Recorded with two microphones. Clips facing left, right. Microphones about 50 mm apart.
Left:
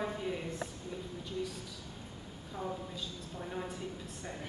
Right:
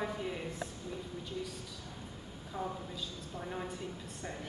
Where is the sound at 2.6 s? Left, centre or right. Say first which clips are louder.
Even; centre.